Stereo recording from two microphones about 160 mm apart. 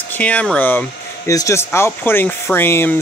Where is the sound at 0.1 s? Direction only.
10° left (ahead or behind).